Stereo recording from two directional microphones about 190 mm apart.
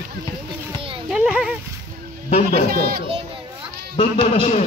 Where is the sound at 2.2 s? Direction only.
35° left (ahead or behind).